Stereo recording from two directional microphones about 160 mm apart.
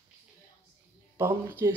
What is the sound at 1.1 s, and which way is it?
Speech, 15° right (ahead or behind).